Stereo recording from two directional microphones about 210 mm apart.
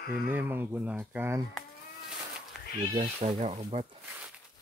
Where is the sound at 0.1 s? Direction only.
10° right (ahead or behind).